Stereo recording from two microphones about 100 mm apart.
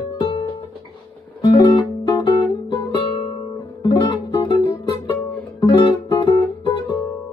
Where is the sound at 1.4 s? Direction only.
45° left (ahead or behind).